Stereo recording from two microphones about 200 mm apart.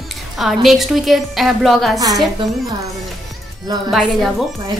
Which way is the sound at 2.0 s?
20° right (ahead or behind).